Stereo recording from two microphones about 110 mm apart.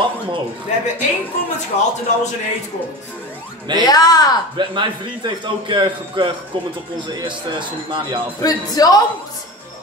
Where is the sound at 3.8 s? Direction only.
35° left (ahead or behind).